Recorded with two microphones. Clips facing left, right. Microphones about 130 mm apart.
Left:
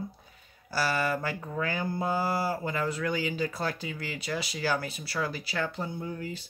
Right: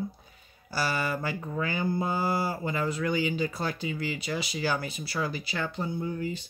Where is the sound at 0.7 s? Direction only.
Centre (ahead or behind).